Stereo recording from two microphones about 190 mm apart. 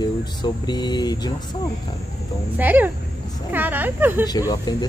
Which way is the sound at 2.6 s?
10° right (ahead or behind).